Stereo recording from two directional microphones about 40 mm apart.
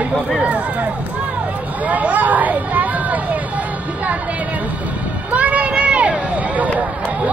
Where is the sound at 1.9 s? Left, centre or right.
Right.